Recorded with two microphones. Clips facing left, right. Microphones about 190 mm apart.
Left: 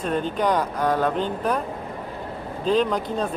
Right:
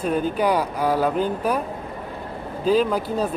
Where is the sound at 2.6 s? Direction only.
5° right (ahead or behind).